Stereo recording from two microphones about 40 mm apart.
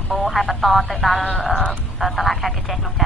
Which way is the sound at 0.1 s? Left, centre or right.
Centre.